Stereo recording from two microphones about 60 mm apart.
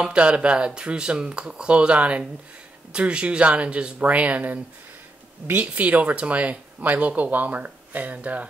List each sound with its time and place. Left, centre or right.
0.0 s speech: centre